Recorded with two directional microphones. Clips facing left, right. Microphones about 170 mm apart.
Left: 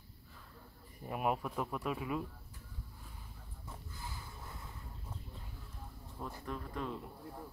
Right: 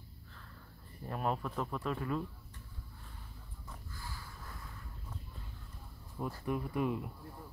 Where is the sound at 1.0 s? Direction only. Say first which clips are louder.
Left 1 dB; 10° left (ahead or behind).